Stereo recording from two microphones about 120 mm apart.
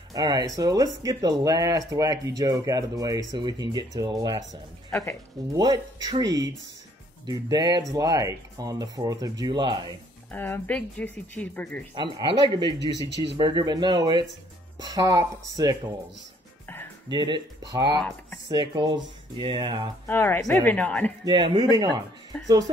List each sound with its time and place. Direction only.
0.1 s speech: 35° right (ahead or behind)
5.5 s speech: 35° right (ahead or behind)
10.3 s speech: 15° left (ahead or behind)
11.9 s speech: 40° right (ahead or behind)
17.1 s speech: 40° right (ahead or behind)
20.1 s speech: 20° left (ahead or behind)
21.2 s speech: 40° right (ahead or behind)
22.3 s speech: 10° left (ahead or behind)